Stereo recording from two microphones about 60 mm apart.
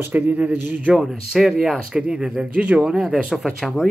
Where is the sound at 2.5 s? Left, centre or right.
Right.